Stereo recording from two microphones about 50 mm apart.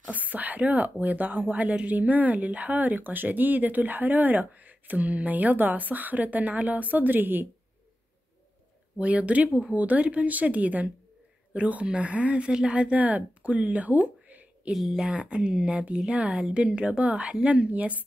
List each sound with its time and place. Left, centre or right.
0.1 s speech: right
8.9 s speech: right
14.7 s speech: centre
15.0 s speech: right